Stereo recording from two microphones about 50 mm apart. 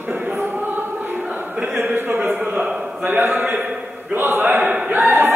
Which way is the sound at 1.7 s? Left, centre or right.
Right.